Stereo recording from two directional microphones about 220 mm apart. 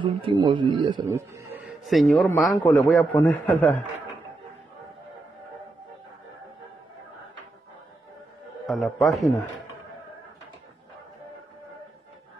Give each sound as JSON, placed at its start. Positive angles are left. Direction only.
{"t": 0.0, "sound": "a man's voice", "side_deg": -20}
{"t": 1.0, "sound": "speech", "side_deg": -10}
{"t": 1.9, "sound": "a man's voice", "side_deg": 0}
{"t": 8.6, "sound": "a man's voice", "side_deg": 0}